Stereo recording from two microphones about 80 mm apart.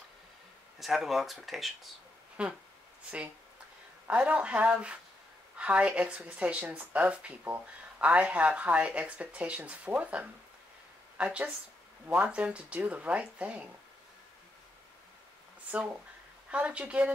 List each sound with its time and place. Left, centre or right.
0.7 s speech: centre
2.4 s speech: centre
4.1 s speech: centre
16.4 s speech: centre